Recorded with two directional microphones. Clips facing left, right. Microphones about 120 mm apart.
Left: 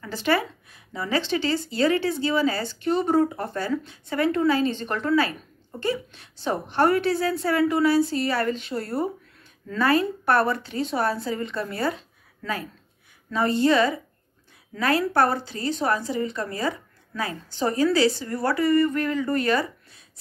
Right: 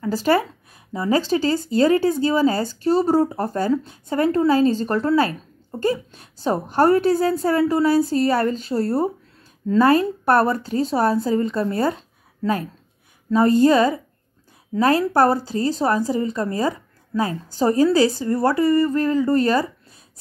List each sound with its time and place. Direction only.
0.0 s speech: 40° right (ahead or behind)
13.3 s speech: 40° right (ahead or behind)